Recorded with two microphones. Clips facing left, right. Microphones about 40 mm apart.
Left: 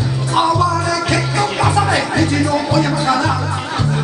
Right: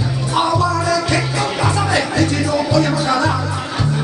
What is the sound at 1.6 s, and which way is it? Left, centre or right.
Music, centre.